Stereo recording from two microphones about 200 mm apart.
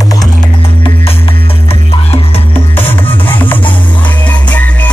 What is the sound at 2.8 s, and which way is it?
Music, 10° left (ahead or behind).